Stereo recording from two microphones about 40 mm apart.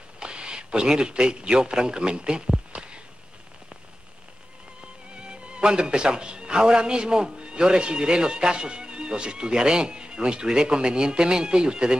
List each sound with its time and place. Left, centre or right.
0.2 s a man's voice: right
5.1 s speech: right